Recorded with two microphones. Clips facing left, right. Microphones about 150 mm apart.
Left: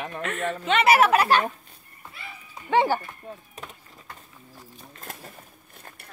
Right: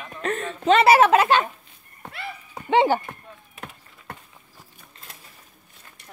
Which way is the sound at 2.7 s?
20° right (ahead or behind).